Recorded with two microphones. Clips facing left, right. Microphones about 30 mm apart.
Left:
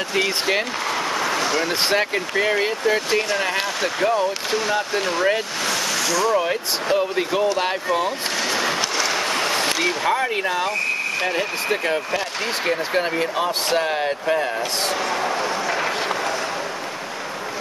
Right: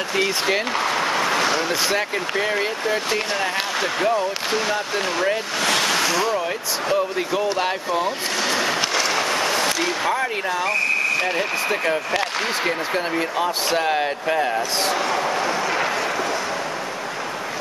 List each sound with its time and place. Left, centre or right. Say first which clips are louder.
0.1 s speech: even; centre
1.1 s a sound: right 2 dB; centre
2.4 s speech: left 2 dB; centre
5.7 s a sound: right 5 dB; right
6.3 s speech: left 3 dB; centre
8.5 s vehicle: right 1 dB; centre
9.4 s a sound: even; centre
10.2 s speech: left 1 dB; centre
13.1 s speech: even; centre
13.7 s speech: right 1 dB; centre